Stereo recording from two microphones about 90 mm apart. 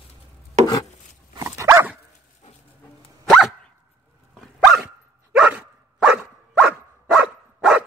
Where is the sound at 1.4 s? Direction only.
35° right (ahead or behind).